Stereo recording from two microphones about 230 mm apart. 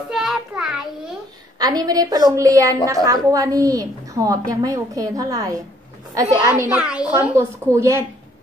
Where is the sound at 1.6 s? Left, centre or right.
Centre.